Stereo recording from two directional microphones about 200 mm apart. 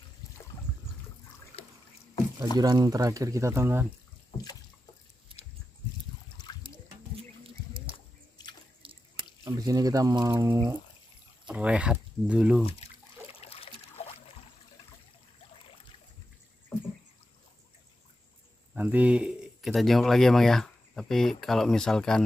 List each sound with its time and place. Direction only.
1.6 s boat: 30° left (ahead or behind)
2.5 s speech: 20° right (ahead or behind)
6.3 s water: 20° left (ahead or behind)
7.2 s music: 25° right (ahead or behind)
8.8 s drip: 25° right (ahead or behind)
9.4 s speech: 20° right (ahead or behind)
12.6 s a sound: 30° left (ahead or behind)
18.8 s speech: 5° right (ahead or behind)